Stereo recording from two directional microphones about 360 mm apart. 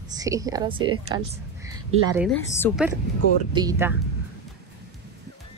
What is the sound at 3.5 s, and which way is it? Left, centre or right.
Speech, centre.